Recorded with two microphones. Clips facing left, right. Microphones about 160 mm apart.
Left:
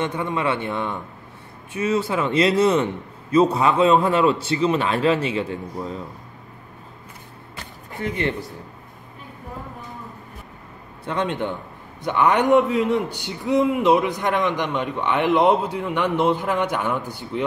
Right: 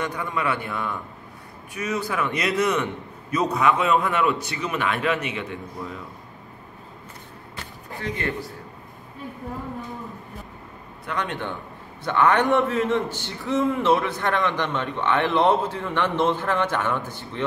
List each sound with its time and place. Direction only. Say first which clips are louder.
0.0 s a man's voice: left 3 dB; 25° left (ahead or behind)
8.2 s a man's voice: left 5 dB; 20° left (ahead or behind)
11.1 s a man's voice: left 5 dB; 20° left (ahead or behind)